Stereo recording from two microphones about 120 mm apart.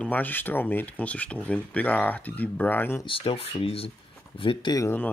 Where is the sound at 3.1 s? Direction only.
50° left (ahead or behind).